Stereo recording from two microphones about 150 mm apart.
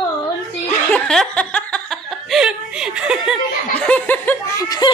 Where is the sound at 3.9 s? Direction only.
10° left (ahead or behind).